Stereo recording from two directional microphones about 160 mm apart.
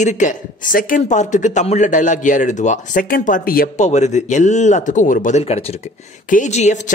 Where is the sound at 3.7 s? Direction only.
45° left (ahead or behind).